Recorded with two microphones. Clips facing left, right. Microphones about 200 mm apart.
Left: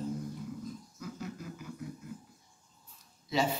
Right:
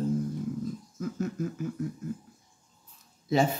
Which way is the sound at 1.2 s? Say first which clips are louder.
Right 12 dB; 45° right (ahead or behind).